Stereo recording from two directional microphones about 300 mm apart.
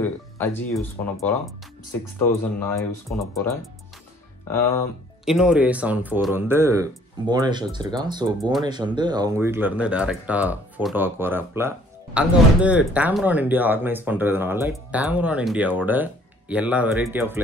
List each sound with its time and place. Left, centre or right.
0.0 s speech: centre
5.2 s speech: centre